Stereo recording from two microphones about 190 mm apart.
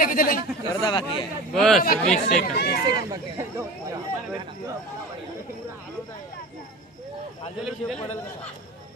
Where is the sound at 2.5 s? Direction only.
60° left (ahead or behind).